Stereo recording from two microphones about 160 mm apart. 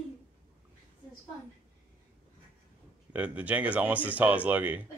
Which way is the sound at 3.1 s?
10° right (ahead or behind).